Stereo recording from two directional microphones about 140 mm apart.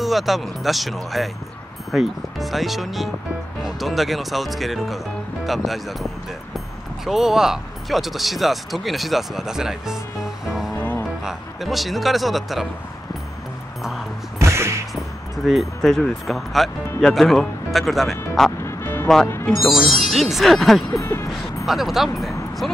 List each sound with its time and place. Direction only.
0.0 s speech: centre (ahead or behind)
7.1 s speech: 5° right (ahead or behind)
10.4 s music: 5° right (ahead or behind)
10.8 s music: 15° left (ahead or behind)
11.2 s a man's voice: centre (ahead or behind)
14.4 s music: 20° right (ahead or behind)
15.4 s speech: centre (ahead or behind)
18.6 s music: 20° left (ahead or behind)
19.2 s speech: 20° left (ahead or behind)
19.6 s speech: centre (ahead or behind)
20.9 s speech: 20° left (ahead or behind)
21.6 s speech: centre (ahead or behind)